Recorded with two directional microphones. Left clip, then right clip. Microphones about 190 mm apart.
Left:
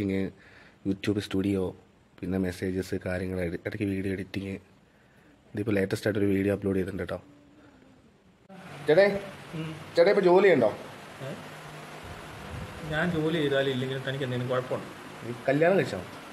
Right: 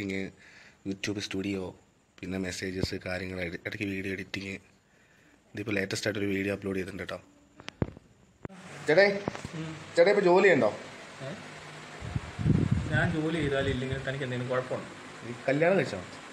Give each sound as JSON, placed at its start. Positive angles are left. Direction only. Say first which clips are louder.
{"t": 0.0, "sound": "speech", "louder": "left 4 dB", "side_deg": 45}
{"t": 2.1, "sound": "speech", "louder": "left 3 dB", "side_deg": 35}
{"t": 8.8, "sound": "a man's voice", "louder": "left 1 dB", "side_deg": 0}